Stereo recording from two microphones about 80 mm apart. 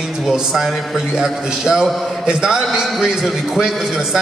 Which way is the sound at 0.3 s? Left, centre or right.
Centre.